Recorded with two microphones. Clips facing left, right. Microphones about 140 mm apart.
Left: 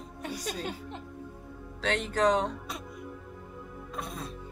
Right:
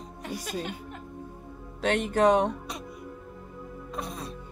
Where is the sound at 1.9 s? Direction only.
55° right (ahead or behind).